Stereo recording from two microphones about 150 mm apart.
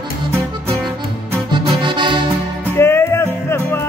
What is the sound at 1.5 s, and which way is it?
Accordion, 30° right (ahead or behind).